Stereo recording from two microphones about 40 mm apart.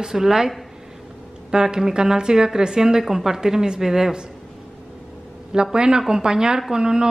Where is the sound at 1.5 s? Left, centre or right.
Centre.